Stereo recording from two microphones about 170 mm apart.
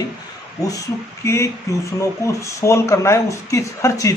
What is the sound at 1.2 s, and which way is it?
Speech, 15° left (ahead or behind).